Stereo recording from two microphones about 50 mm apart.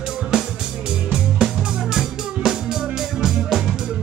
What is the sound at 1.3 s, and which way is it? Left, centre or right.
Music, centre.